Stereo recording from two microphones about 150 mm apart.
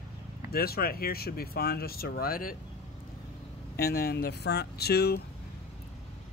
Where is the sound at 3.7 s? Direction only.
90° left.